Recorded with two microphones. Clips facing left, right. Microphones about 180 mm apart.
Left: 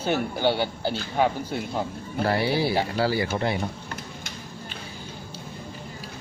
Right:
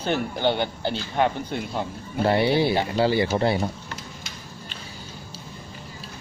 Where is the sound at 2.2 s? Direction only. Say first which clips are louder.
Right 4 dB; 25° right (ahead or behind).